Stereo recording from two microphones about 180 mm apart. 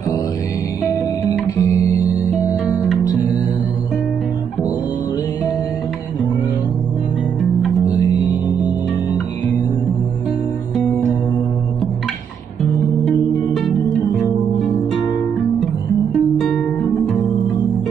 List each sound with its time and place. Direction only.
1.6 s music: 20° left (ahead or behind)
2.4 s music: 5° right (ahead or behind)
3.0 s music: 20° left (ahead or behind)